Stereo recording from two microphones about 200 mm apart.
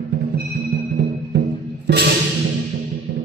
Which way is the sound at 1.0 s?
55° right (ahead or behind).